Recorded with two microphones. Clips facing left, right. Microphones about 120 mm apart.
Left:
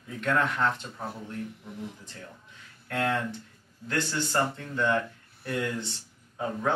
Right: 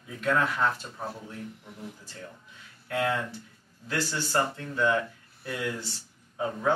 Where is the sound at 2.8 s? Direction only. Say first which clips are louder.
Even; 10° right (ahead or behind).